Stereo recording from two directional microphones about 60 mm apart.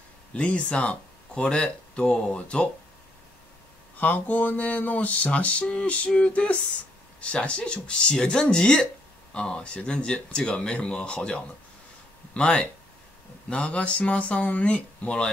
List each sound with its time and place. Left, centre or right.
0.3 s speech: centre
4.0 s music: left
7.2 s speech: centre
13.5 s music: left